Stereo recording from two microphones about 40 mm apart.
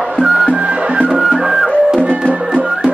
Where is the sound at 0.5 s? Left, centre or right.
Right.